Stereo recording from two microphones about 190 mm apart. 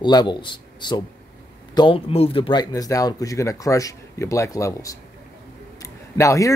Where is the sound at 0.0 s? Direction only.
25° left (ahead or behind).